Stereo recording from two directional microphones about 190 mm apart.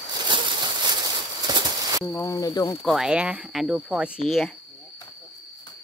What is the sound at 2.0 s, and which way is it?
Speech, 15° left (ahead or behind).